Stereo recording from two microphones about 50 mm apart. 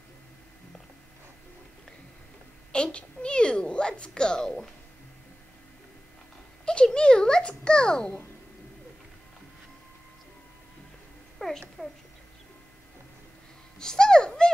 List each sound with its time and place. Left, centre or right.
2.7 s a child's voice: left
6.6 s a child's voice: centre
11.3 s babbling: centre
13.7 s music: centre